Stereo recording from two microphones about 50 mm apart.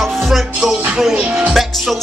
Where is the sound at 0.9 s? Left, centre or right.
Centre.